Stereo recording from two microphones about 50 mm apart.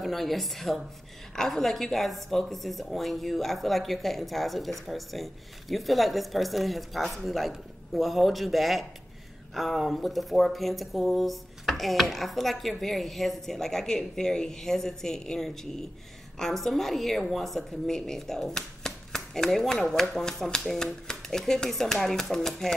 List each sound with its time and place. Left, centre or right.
0.0 s a woman's voice: centre